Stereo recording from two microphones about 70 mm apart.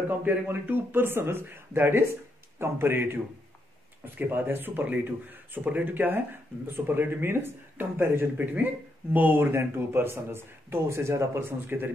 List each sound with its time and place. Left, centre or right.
0.2 s speech: right
11.7 s speech: right